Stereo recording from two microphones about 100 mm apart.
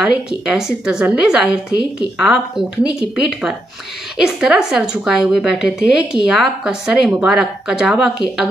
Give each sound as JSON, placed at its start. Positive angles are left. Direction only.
{"t": 0.0, "sound": "a woman's voice", "side_deg": -5}